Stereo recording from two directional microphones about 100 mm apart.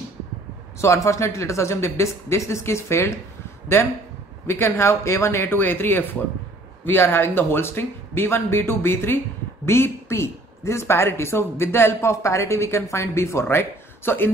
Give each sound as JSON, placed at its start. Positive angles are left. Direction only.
{"t": 0.7, "sound": "speech", "side_deg": 30}